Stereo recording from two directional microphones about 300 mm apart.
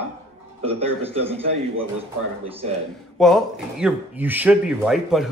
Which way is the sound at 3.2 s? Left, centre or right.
Centre.